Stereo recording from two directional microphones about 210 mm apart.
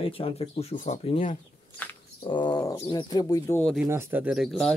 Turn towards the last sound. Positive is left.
turn(degrees=0)  # may be behind; listen again after turning